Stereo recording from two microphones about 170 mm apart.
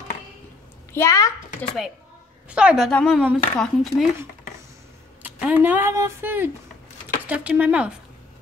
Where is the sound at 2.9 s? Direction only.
5° left (ahead or behind).